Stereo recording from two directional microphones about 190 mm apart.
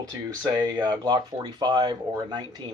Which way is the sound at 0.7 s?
20° right (ahead or behind).